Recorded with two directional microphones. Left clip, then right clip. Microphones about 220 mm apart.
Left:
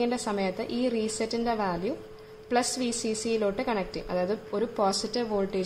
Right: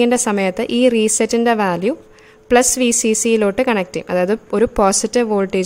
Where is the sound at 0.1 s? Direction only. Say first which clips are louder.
Right 13 dB; 45° right (ahead or behind).